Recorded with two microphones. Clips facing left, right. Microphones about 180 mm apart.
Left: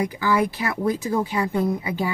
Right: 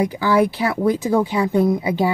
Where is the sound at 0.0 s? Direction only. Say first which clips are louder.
Right 5 dB; 30° right (ahead or behind).